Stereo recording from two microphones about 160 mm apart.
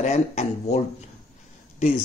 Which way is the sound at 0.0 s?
45° left (ahead or behind).